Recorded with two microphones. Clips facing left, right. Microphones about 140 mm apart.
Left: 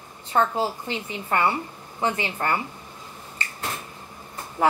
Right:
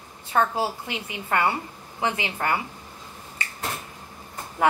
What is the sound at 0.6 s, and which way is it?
Speech, 15° right (ahead or behind).